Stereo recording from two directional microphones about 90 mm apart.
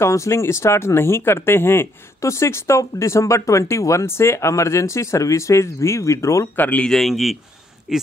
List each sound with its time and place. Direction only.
0.0 s speech: 30° left (ahead or behind)
6.5 s speech: 20° left (ahead or behind)
6.9 s a man's voice: centre (ahead or behind)